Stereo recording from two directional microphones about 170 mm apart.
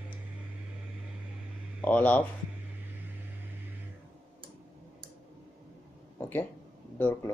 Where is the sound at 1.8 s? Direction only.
10° left (ahead or behind).